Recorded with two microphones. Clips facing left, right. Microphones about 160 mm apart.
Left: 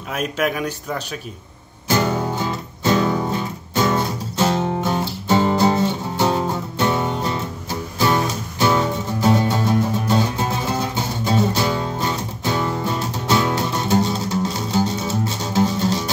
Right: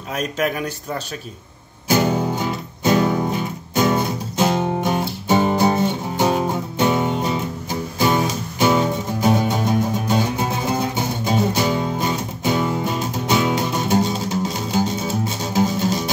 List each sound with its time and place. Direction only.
0.2 s speech: 10° left (ahead or behind)
1.9 s music: 15° right (ahead or behind)
8.5 s music: 15° right (ahead or behind)